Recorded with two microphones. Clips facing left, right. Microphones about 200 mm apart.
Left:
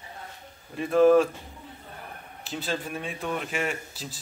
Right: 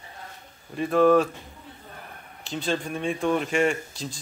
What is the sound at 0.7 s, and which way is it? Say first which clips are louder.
Speech: even; centre (ahead or behind).